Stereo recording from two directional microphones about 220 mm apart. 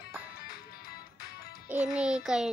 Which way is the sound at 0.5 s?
40° left (ahead or behind).